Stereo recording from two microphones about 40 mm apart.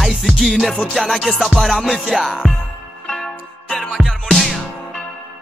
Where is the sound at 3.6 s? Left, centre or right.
Centre.